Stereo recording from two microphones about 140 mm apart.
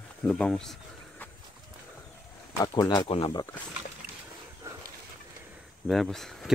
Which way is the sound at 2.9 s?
40° left (ahead or behind).